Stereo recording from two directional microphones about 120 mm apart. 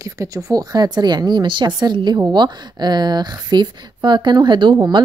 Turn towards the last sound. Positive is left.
turn(degrees=-40)  # may be behind; listen again after turning